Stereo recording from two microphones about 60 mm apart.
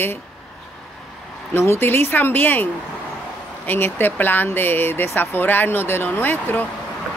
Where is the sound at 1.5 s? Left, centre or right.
Left.